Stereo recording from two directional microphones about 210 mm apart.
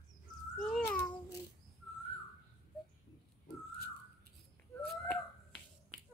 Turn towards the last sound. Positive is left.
turn(degrees=10)  # may be behind; listen again after turning